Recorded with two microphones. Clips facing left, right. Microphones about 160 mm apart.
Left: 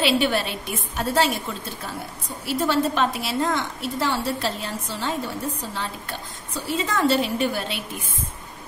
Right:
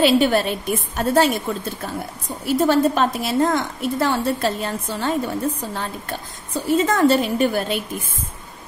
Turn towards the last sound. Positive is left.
turn(degrees=-45)  # may be behind; listen again after turning